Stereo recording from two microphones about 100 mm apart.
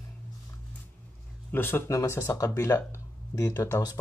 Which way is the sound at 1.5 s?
20° left (ahead or behind).